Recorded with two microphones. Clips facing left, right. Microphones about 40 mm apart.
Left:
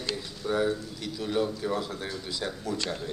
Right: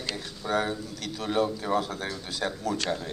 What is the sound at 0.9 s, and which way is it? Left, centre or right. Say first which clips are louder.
Speech: right 1 dB; right.